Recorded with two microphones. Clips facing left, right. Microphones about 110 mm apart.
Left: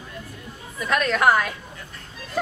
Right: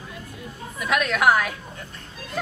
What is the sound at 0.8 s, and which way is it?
Speech, 5° right (ahead or behind).